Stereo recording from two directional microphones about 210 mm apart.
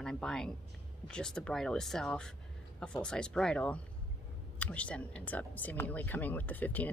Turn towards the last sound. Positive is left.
turn(degrees=10)  # may be behind; listen again after turning